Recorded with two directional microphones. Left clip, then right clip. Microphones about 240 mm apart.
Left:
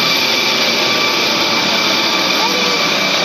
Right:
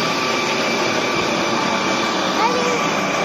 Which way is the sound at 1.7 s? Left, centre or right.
Centre.